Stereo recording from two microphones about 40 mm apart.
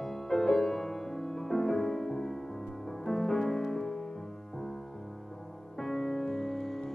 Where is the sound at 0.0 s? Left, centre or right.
Centre.